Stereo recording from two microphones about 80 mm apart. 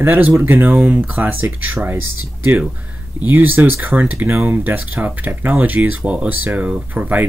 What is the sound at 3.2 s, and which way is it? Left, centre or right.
Speech, right.